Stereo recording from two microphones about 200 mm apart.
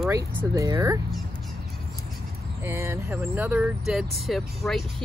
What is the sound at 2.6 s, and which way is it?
Speech, 10° right (ahead or behind).